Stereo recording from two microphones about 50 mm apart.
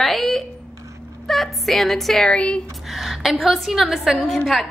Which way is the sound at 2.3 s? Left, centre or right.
Left.